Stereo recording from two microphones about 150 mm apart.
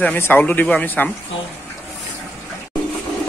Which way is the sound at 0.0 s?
10° left (ahead or behind).